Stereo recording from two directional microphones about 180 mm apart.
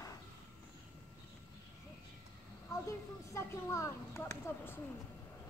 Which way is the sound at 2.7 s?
15° left (ahead or behind).